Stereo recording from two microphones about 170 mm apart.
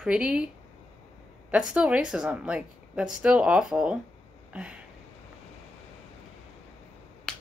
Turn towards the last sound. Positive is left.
turn(degrees=5)  # may be behind; listen again after turning